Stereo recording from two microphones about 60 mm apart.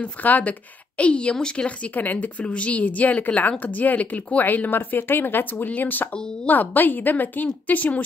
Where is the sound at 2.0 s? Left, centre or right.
Left.